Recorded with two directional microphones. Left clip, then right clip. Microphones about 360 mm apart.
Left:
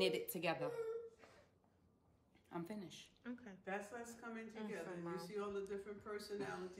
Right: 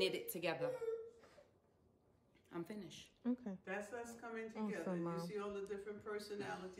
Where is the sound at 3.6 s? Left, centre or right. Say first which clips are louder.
Right 1 dB; centre.